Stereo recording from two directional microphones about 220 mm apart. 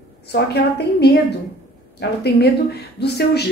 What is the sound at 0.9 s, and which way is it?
Speech, 50° left (ahead or behind).